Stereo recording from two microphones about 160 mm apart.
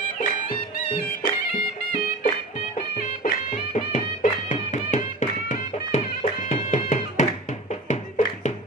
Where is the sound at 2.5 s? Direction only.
50° left (ahead or behind).